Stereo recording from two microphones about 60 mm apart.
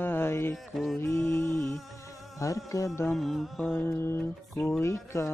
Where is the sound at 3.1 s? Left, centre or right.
Centre.